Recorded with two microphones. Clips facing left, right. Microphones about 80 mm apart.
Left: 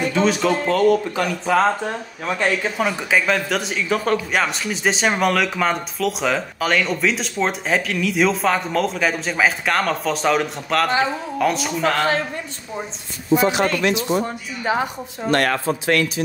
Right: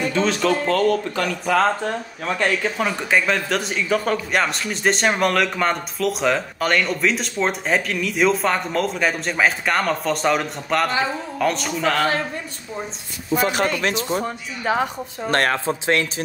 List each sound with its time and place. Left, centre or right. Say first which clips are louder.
0.1 s speech: left 1 dB; centre
13.4 s speech: right 1 dB; right
14.2 s speech: even; centre
15.2 s speech: left 1 dB; right